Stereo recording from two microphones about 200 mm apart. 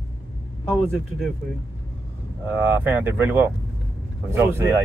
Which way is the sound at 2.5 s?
10° right (ahead or behind).